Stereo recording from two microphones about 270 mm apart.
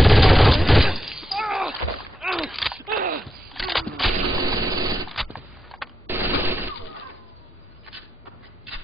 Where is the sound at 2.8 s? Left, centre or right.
Right.